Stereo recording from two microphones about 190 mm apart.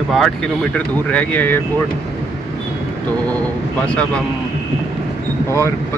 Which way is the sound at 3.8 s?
5° left (ahead or behind).